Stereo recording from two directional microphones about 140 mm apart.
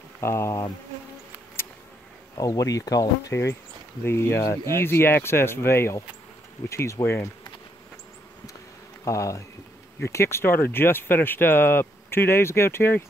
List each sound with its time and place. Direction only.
0.2 s speech: 20° left (ahead or behind)
2.3 s speech: 25° left (ahead or behind)
9.0 s speech: 25° left (ahead or behind)